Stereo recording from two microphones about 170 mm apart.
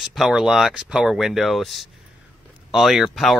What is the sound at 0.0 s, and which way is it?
Speech, centre (ahead or behind).